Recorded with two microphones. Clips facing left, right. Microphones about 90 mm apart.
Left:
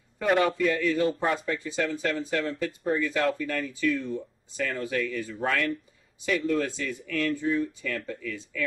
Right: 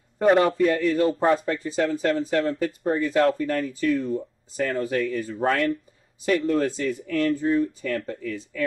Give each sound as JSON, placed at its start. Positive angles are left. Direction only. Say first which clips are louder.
{"t": 0.2, "sound": "speech", "louder": "right 5 dB", "side_deg": -40}